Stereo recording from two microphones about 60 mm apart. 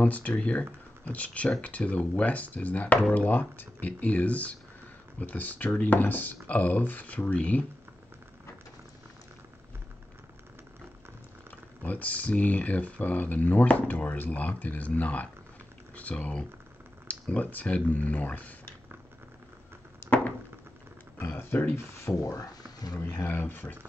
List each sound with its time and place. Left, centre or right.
0.0 s speech: left
11.8 s speech: left
21.2 s speech: left
22.1 s speech: left
23.2 s speech: left